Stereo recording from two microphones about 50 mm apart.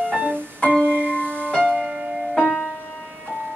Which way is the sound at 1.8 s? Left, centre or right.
Centre.